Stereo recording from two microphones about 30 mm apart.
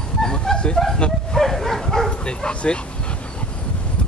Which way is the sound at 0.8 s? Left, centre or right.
Left.